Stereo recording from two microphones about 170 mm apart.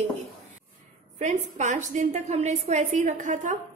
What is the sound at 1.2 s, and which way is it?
A woman's voice, 45° right (ahead or behind).